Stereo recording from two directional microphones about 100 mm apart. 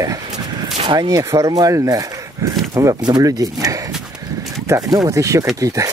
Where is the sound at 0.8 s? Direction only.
45° right (ahead or behind).